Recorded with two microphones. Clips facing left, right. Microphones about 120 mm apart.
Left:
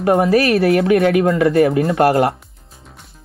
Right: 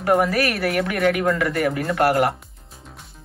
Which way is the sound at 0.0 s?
25° left (ahead or behind).